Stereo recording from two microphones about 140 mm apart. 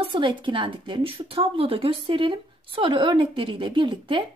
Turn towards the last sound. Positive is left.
turn(degrees=-35)  # may be behind; listen again after turning